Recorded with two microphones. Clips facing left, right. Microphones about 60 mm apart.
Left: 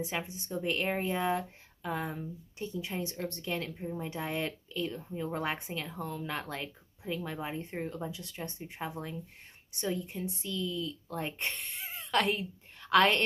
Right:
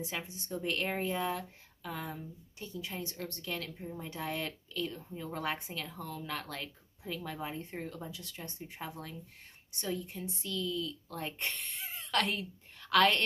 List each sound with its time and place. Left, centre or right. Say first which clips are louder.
0.0 s a woman's voice: left 4 dB; left